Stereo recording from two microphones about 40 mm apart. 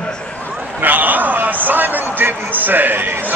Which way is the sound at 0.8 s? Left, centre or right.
Right.